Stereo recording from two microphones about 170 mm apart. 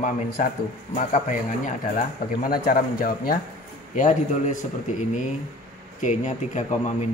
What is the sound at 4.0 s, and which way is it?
Speech, 45° left (ahead or behind).